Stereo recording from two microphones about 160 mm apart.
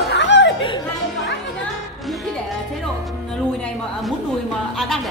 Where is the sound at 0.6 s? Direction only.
30° left (ahead or behind).